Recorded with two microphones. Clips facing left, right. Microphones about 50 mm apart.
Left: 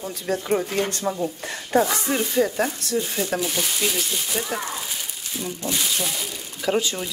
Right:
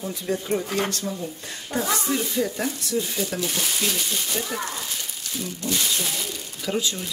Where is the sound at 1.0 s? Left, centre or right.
Left.